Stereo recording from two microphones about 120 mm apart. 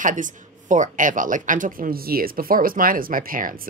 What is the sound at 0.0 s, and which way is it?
Speech, 90° right.